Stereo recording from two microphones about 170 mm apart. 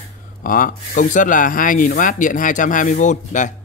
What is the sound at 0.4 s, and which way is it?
Speech, 55° left (ahead or behind).